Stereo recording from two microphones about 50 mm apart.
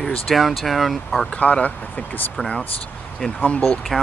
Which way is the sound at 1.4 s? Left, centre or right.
Left.